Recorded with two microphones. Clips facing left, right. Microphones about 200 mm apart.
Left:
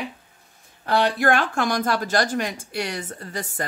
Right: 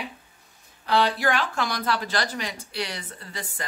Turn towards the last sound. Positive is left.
turn(degrees=45)  # may be behind; listen again after turning